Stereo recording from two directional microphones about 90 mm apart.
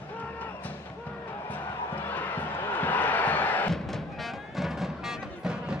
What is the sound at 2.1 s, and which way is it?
Crowd, 20° left (ahead or behind).